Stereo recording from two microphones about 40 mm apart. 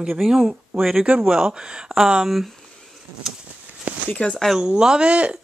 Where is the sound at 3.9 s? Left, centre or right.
Right.